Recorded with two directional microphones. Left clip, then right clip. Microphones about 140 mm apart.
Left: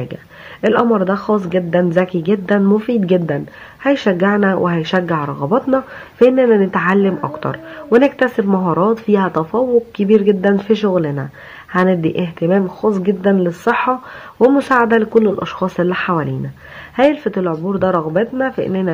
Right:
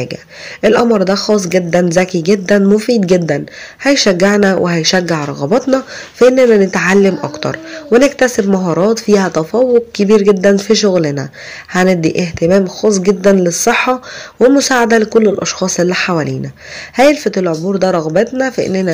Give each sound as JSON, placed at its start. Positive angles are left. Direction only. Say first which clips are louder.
{"t": 0.0, "sound": "speech", "louder": "right 6 dB", "side_deg": -30}
{"t": 4.6, "sound": "speech", "louder": "right 4 dB", "side_deg": -25}
{"t": 6.1, "sound": "speech", "louder": "right 3 dB", "side_deg": -25}
{"t": 12.0, "sound": "speech", "louder": "right 5 dB", "side_deg": -20}
{"t": 14.4, "sound": "speech", "louder": "right 3 dB", "side_deg": -20}